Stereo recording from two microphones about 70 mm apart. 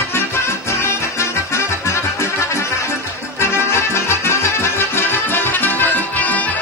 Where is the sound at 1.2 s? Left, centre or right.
Left.